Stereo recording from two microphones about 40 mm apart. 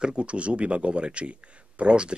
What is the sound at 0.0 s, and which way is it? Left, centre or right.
Speech, right.